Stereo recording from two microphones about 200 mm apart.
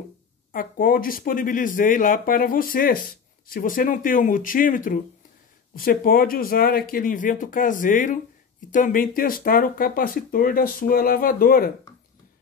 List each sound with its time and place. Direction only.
0.5 s speech: 45° left (ahead or behind)